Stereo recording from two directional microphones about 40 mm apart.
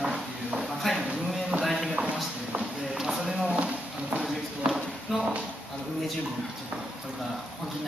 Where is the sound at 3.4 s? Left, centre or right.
Right.